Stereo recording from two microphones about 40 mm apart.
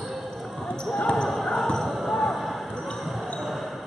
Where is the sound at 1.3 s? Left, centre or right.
Centre.